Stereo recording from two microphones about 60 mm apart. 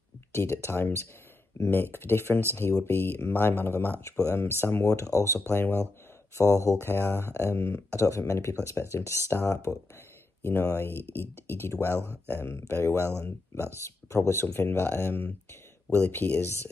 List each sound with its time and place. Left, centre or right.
0.3 s speech: left
0.7 s speech: left
4.8 s speech: left
5.5 s speech: left
6.3 s speech: left
6.8 s speech: left
8.8 s speech: centre
9.5 s speech: left
10.4 s speech: left